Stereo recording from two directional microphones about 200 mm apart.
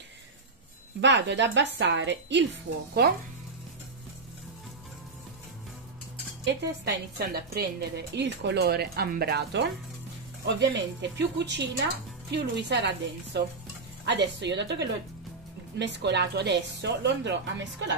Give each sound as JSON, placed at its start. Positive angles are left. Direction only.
{"t": 1.0, "sound": "a woman's voice", "side_deg": -60}
{"t": 6.4, "sound": "a woman's voice", "side_deg": -55}